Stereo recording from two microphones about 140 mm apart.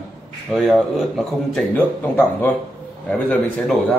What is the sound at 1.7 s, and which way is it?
Speech, 15° left (ahead or behind).